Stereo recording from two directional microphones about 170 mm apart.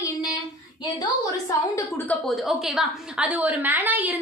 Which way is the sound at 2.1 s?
Centre (ahead or behind).